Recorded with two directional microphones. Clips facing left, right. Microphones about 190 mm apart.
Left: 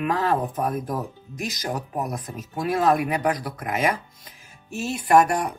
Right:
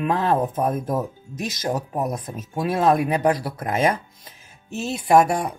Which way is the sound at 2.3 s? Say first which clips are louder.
Even; 25° right (ahead or behind).